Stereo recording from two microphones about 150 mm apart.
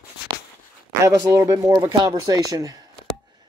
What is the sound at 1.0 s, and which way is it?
Speech, 20° right (ahead or behind).